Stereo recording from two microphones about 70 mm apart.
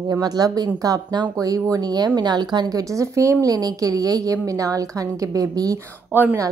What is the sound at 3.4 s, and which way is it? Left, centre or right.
A woman's voice, right.